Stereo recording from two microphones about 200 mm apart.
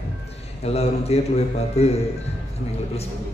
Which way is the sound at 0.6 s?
30° left (ahead or behind).